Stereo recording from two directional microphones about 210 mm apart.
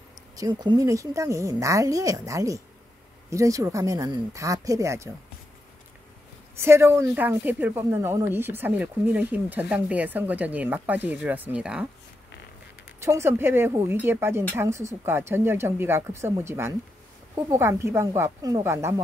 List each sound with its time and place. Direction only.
0.4 s speech: 20° right (ahead or behind)
6.5 s speech: 10° right (ahead or behind)
13.0 s speech: 10° right (ahead or behind)